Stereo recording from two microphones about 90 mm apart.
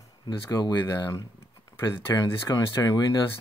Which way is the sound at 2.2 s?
45° left (ahead or behind).